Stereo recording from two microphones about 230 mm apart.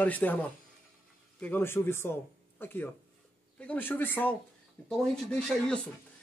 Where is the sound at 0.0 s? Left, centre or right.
Centre.